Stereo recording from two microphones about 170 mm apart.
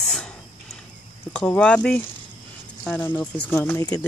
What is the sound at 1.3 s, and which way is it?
Speech, 5° left (ahead or behind).